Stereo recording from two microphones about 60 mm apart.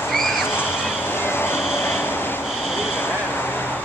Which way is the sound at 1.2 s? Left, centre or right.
Left.